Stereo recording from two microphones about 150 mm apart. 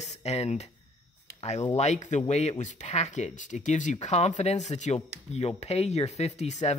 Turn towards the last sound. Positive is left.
turn(degrees=50)  # may be behind; listen again after turning